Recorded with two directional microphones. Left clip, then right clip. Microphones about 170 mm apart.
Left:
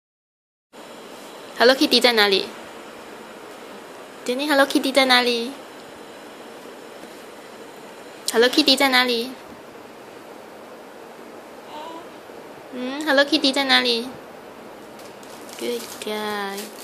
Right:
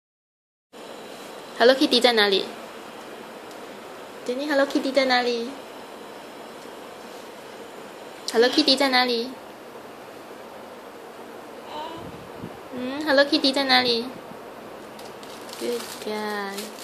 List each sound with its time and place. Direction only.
1.6 s a woman's voice: 10° left (ahead or behind)
4.3 s a woman's voice: 25° left (ahead or behind)
8.3 s a woman's voice: 10° left (ahead or behind)
12.8 s a woman's voice: 10° left (ahead or behind)
15.6 s a woman's voice: 10° left (ahead or behind)